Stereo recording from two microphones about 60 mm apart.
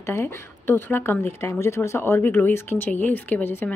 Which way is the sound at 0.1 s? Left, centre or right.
Left.